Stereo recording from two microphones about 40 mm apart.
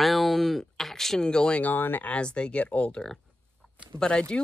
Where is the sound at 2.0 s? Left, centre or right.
Left.